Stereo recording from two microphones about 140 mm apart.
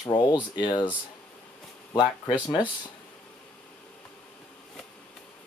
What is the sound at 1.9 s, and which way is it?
Speech, 30° left (ahead or behind).